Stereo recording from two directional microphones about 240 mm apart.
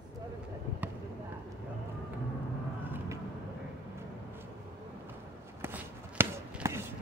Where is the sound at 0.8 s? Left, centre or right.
Centre.